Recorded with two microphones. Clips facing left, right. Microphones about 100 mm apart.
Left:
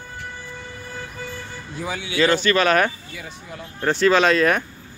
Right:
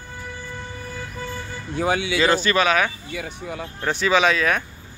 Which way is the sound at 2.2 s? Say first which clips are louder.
Left 3 dB; 15° right (ahead or behind).